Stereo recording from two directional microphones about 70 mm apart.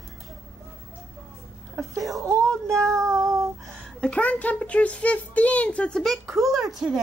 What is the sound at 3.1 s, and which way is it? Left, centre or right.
Child singing, right.